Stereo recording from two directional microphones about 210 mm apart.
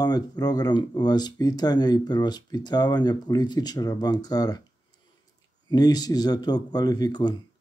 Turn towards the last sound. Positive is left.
turn(degrees=20)  # may be behind; listen again after turning